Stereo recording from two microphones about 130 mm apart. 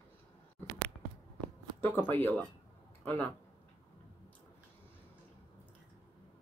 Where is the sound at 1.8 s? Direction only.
15° left (ahead or behind).